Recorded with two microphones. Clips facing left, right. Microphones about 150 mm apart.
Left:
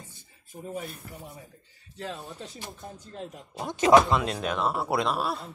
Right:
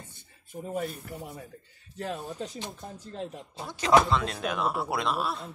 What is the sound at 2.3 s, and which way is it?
Speech, 40° right (ahead or behind).